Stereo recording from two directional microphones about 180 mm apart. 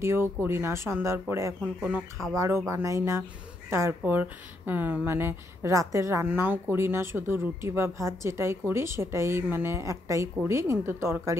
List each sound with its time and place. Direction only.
0.0 s speech: 15° right (ahead or behind)